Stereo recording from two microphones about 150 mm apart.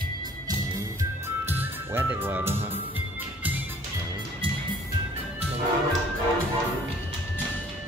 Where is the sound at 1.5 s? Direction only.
15° right (ahead or behind).